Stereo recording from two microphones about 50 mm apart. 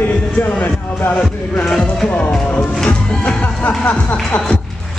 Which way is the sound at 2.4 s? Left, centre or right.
Left.